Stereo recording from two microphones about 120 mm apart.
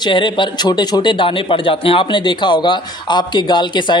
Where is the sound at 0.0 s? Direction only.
40° left (ahead or behind).